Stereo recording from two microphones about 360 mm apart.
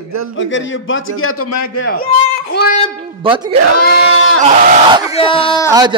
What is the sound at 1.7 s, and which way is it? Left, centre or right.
Speech, left.